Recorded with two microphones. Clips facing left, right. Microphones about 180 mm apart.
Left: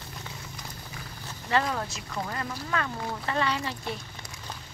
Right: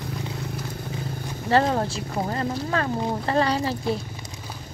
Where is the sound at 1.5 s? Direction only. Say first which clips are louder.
Right 7 dB; 35° right (ahead or behind).